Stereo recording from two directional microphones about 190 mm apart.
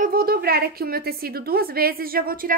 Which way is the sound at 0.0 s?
50° right (ahead or behind).